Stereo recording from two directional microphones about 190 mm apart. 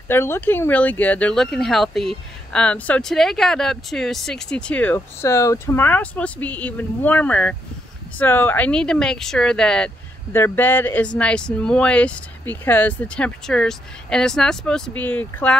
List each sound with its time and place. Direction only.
0.1 s speech: 10° left (ahead or behind)